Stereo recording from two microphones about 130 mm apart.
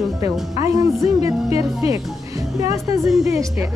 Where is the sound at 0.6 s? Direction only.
25° right (ahead or behind).